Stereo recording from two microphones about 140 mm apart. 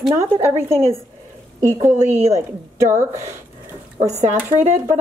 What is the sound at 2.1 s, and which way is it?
A woman's voice, 20° right (ahead or behind).